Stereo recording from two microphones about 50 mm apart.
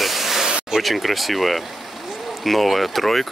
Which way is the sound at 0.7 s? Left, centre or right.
Centre.